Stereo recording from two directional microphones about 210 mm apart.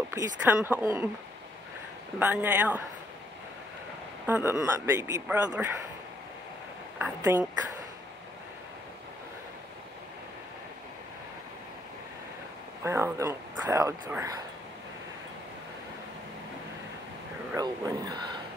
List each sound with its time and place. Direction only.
0.1 s speech: 10° right (ahead or behind)
2.1 s speech: 10° right (ahead or behind)
4.3 s speech: 10° right (ahead or behind)
7.0 s speech: 10° right (ahead or behind)
12.8 s speech: 15° right (ahead or behind)
17.5 s speech: 15° right (ahead or behind)